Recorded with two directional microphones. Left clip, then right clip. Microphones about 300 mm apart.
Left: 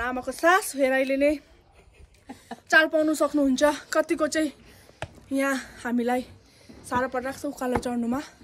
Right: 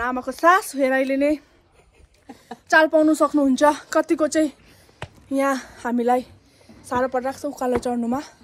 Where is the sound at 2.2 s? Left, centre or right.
Centre.